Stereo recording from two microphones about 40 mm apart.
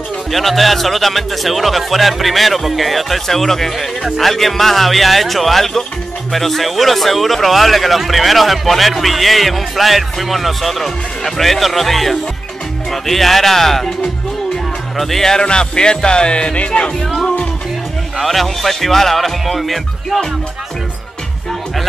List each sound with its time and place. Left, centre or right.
0.3 s speech: centre
15.4 s speech: left
18.2 s speech: centre